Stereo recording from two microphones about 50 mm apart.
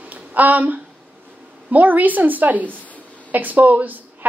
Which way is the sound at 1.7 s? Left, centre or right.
Right.